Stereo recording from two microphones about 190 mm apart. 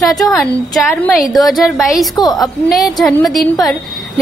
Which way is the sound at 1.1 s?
Centre (ahead or behind).